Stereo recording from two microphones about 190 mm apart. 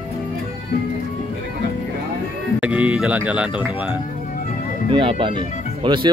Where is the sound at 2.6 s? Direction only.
5° right (ahead or behind).